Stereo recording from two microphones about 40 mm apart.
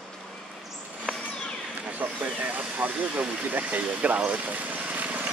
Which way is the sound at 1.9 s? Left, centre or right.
Right.